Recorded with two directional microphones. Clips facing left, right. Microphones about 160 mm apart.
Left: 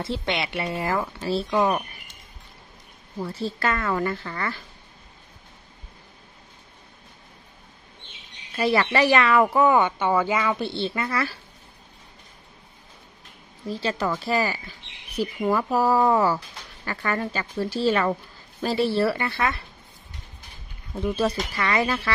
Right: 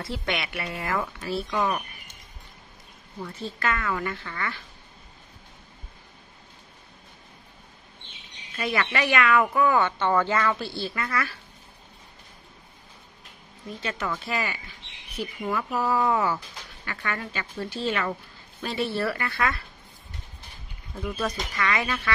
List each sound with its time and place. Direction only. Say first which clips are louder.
0.0 s speech: left 3 dB; 25° left (ahead or behind)
3.2 s a woman's voice: left 5 dB; 35° left (ahead or behind)
8.5 s speech: left 6 dB; 35° left (ahead or behind)
13.7 s a woman's voice: left 5 dB; 30° left (ahead or behind)
20.9 s a woman's voice: left 6 dB; 30° left (ahead or behind)